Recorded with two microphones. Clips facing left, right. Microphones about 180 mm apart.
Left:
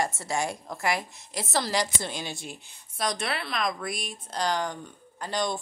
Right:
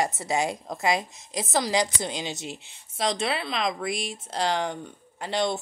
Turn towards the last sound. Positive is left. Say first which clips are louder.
# right 3 dB
turn(degrees=-25)  # may be behind; listen again after turning